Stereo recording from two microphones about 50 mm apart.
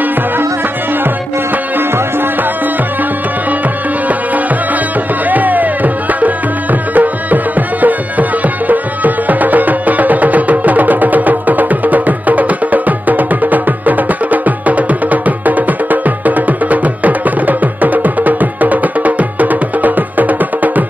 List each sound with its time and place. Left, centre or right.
5.3 s music: right